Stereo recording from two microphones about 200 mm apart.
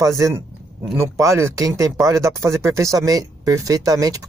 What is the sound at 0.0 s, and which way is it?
Speech, 15° right (ahead or behind).